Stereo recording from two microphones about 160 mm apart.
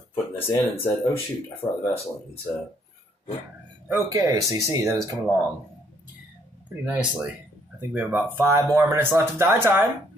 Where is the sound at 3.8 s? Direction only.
20° right (ahead or behind).